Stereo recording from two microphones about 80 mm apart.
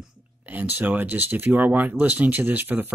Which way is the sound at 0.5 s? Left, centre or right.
Right.